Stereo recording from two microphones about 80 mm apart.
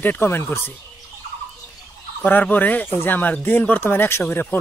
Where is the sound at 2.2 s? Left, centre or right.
Left.